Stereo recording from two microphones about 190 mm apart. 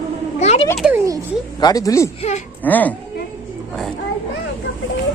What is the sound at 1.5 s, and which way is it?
Speech, 20° left (ahead or behind).